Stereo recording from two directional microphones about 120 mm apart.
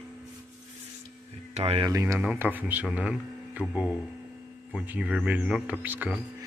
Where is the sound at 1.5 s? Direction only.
60° right (ahead or behind).